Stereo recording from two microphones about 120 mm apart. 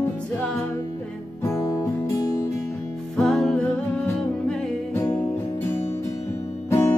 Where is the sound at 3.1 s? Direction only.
5° left (ahead or behind).